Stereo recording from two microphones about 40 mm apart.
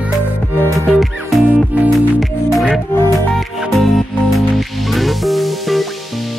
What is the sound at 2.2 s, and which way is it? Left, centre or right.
Music, centre.